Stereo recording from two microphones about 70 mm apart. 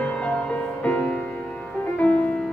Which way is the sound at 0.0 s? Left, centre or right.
Centre.